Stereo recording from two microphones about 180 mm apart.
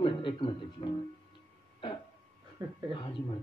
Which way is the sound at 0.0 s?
30° left (ahead or behind).